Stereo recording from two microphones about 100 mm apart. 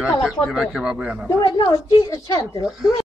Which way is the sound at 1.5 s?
55° left (ahead or behind).